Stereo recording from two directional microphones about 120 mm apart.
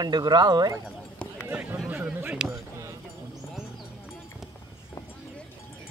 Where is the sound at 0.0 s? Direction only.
35° right (ahead or behind).